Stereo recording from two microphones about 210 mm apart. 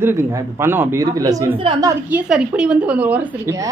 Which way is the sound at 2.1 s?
5° right (ahead or behind).